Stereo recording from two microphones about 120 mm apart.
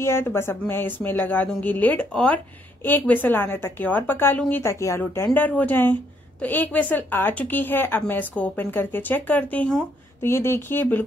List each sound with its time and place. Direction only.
0.0 s speech: 20° left (ahead or behind)